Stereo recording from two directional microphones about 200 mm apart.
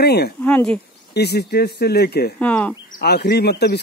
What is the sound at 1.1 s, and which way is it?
Speech, 55° left (ahead or behind).